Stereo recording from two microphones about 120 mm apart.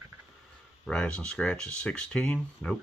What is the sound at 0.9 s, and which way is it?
Speech, 10° left (ahead or behind).